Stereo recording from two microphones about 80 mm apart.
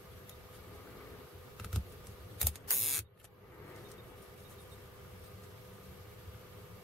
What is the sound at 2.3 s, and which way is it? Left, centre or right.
Mechanisms, centre.